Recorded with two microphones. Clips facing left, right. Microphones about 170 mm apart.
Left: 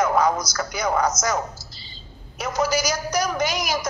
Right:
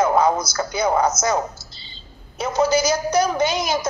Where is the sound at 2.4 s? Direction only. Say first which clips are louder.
Right 4 dB; 25° right (ahead or behind).